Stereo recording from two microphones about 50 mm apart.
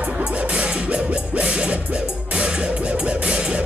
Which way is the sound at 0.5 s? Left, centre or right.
Right.